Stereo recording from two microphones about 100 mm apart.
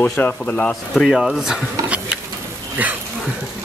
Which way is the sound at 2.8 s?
15° right (ahead or behind).